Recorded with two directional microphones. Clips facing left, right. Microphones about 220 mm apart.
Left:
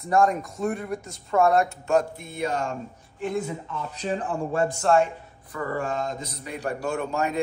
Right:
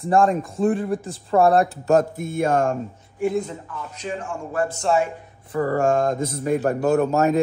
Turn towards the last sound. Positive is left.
turn(degrees=-45)  # may be behind; listen again after turning